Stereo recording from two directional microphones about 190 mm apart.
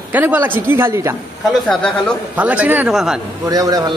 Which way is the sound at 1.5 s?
Centre (ahead or behind).